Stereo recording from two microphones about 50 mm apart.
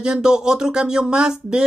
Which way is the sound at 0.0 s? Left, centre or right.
Centre.